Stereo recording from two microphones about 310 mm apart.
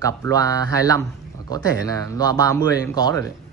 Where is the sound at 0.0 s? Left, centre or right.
Centre.